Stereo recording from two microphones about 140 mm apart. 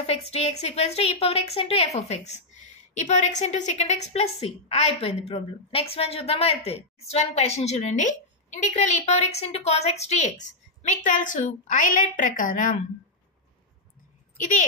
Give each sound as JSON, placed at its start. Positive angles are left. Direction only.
{"t": 0.3, "sound": "a woman's voice", "side_deg": 50}
{"t": 10.4, "sound": "a woman's voice", "side_deg": 60}